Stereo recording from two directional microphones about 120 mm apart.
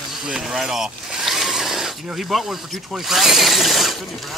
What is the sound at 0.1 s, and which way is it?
Speech, 5° right (ahead or behind).